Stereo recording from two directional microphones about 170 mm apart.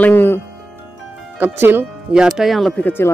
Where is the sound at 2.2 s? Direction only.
Centre (ahead or behind).